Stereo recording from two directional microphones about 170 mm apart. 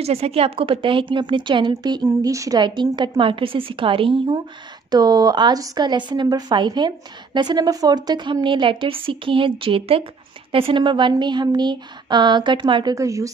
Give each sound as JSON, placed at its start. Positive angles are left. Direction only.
{"t": 0.0, "sound": "a woman's voice", "side_deg": -35}